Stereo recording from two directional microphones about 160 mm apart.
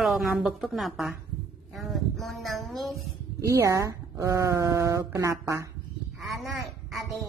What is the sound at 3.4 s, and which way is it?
Speech, 20° right (ahead or behind).